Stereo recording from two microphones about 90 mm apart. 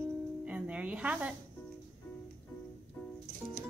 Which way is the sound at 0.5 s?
15° right (ahead or behind).